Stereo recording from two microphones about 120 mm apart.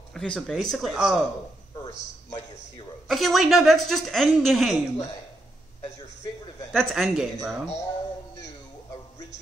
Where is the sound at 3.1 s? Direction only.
Centre (ahead or behind).